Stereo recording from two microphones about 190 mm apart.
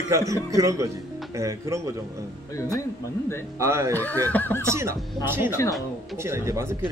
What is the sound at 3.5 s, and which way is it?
Speech, 15° right (ahead or behind).